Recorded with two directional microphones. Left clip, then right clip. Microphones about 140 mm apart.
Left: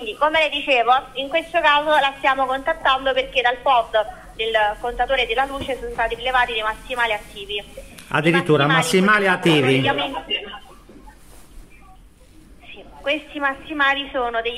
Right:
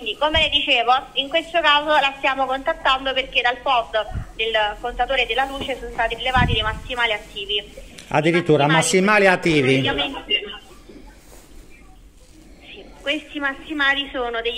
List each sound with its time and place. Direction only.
0.0 s a woman's voice: 15° right (ahead or behind)
8.9 s speech: 30° right (ahead or behind)
9.8 s a woman's voice: 15° right (ahead or behind)
12.6 s a woman's voice: 15° right (ahead or behind)